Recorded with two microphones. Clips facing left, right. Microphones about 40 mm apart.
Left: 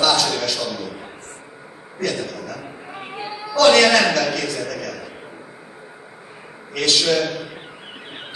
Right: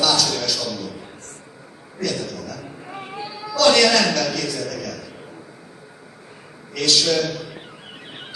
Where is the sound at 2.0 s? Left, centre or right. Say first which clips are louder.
Left 1 dB; left.